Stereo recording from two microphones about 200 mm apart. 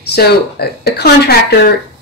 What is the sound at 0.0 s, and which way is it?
Speech, 55° left (ahead or behind).